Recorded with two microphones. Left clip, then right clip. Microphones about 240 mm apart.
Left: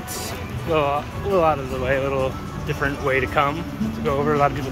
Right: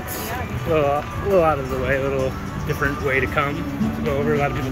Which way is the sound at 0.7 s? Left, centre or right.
Centre.